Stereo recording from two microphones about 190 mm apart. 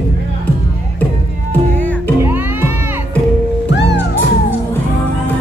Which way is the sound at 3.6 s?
65° left (ahead or behind).